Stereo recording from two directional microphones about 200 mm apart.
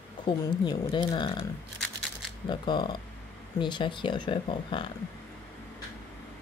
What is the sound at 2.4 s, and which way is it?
Speech, 20° left (ahead or behind).